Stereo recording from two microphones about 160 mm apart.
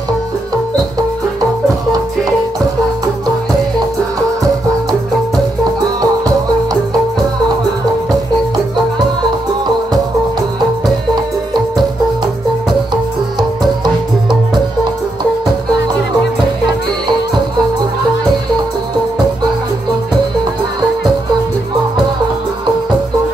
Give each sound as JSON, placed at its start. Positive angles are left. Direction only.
{"t": 5.9, "sound": "music", "side_deg": -20}